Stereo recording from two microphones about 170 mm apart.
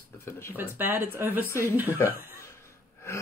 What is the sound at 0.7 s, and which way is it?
Speech, 10° right (ahead or behind).